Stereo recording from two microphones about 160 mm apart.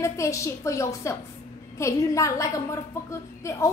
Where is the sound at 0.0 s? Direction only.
20° left (ahead or behind).